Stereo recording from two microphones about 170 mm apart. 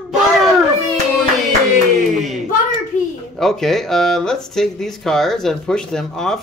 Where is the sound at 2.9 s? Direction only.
50° left (ahead or behind).